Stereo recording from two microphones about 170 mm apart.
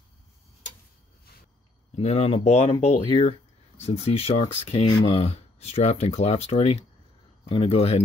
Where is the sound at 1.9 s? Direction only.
40° left (ahead or behind).